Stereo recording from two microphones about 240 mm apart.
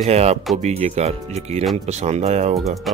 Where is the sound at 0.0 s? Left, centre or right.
Right.